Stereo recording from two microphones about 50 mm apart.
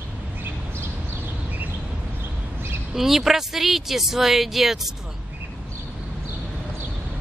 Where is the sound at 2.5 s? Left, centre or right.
Right.